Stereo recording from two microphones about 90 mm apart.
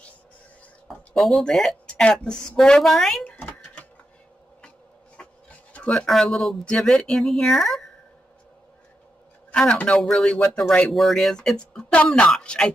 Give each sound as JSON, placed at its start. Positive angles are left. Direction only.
{"t": 0.8, "sound": "speech", "side_deg": 0}
{"t": 3.3, "sound": "a sound", "side_deg": 20}
{"t": 6.0, "sound": "speech", "side_deg": 5}
{"t": 9.5, "sound": "speech", "side_deg": 10}